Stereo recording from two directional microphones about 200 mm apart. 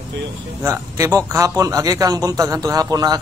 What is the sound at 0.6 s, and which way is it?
A man's voice, 15° right (ahead or behind).